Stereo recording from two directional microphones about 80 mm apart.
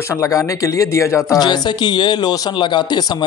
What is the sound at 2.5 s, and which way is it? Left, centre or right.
Speech, left.